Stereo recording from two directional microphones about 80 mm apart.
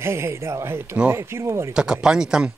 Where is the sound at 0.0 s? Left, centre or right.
Right.